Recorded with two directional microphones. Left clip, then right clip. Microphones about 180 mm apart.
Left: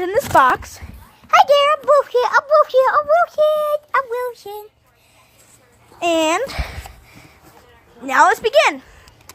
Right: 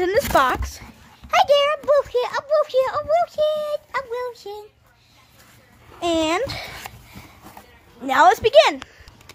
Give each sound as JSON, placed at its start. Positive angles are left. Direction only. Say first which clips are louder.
{"t": 0.3, "sound": "a child's voice", "louder": "left 5 dB", "side_deg": 0}
{"t": 5.9, "sound": "a child's voice", "louder": "left 4 dB", "side_deg": 20}
{"t": 8.0, "sound": "a woman's voice", "louder": "left 1 dB", "side_deg": 5}